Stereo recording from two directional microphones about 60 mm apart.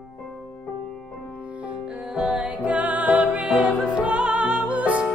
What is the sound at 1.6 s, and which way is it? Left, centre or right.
Music, centre.